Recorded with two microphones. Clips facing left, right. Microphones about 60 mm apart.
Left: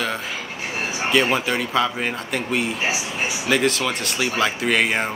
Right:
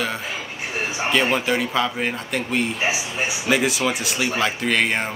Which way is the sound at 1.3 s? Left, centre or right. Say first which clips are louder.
Even; centre.